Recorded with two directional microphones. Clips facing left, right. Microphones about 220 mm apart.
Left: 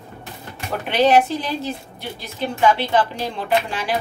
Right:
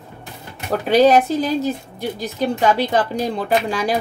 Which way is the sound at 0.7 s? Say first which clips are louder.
Right 3 dB; 40° right (ahead or behind).